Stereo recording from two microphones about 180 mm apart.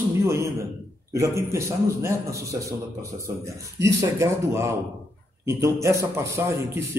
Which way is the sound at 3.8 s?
15° right (ahead or behind).